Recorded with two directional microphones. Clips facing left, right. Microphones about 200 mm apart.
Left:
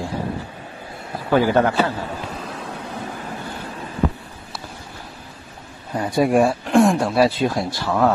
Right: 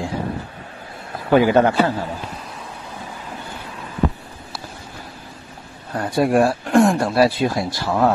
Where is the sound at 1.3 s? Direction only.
15° right (ahead or behind).